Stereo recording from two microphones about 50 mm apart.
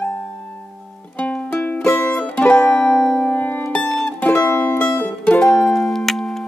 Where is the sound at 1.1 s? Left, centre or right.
Left.